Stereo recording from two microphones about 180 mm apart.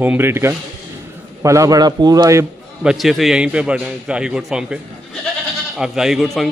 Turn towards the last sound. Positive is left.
turn(degrees=0)  # may be behind; listen again after turning